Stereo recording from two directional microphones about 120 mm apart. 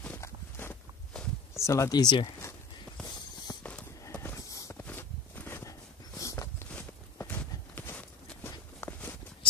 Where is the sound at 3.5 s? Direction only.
30° left (ahead or behind).